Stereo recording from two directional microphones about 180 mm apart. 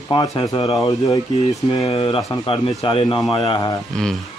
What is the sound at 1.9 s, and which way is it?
Speech, 30° left (ahead or behind).